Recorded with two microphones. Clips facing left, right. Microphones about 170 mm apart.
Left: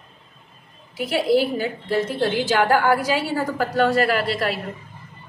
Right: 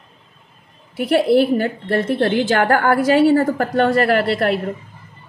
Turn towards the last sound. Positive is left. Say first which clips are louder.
# right 6 dB
turn(degrees=-60)  # may be behind; listen again after turning